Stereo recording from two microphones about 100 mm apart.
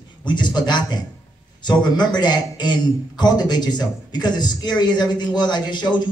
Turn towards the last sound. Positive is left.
turn(degrees=50)  # may be behind; listen again after turning